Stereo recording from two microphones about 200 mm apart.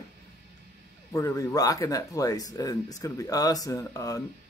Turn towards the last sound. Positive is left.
turn(degrees=15)  # may be behind; listen again after turning